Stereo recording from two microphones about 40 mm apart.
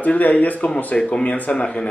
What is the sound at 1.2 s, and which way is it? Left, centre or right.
Speech, left.